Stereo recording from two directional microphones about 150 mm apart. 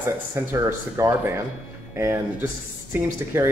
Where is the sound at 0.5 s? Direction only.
20° right (ahead or behind).